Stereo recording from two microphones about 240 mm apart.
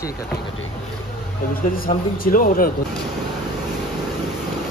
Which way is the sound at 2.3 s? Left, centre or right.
Left.